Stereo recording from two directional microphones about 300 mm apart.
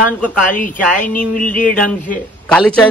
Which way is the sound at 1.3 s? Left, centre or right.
Centre.